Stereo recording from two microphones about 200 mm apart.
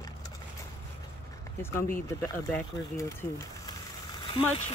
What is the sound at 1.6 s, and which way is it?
Speech, 10° left (ahead or behind).